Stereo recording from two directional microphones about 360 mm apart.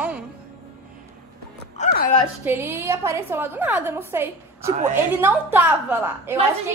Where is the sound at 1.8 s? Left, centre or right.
Left.